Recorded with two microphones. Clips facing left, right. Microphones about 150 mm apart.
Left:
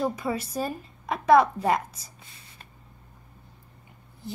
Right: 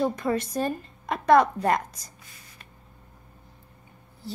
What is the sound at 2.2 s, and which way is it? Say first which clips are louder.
Gasp: even; 25° left (ahead or behind).